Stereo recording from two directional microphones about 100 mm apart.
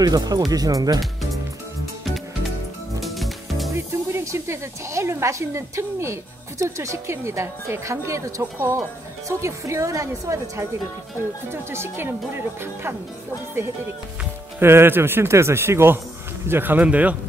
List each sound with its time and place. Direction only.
0.0 s a woman's voice: 40° right (ahead or behind)
3.0 s music: centre (ahead or behind)
3.7 s a woman's voice: 30° right (ahead or behind)
14.6 s speech: 25° right (ahead or behind)